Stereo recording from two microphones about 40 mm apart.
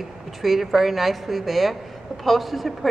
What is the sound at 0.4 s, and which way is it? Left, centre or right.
A woman's voice, centre.